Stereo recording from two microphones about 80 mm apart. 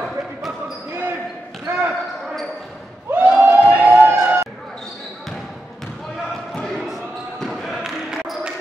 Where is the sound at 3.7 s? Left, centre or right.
Centre.